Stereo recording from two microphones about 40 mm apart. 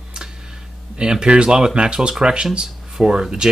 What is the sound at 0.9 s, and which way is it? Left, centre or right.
Speech, right.